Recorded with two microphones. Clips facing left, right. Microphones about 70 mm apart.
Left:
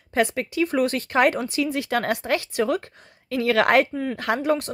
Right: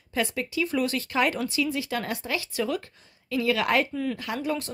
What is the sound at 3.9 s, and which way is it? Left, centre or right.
Speech, left.